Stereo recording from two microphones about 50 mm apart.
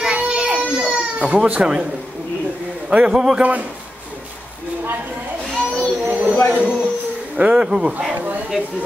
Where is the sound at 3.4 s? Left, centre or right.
Right.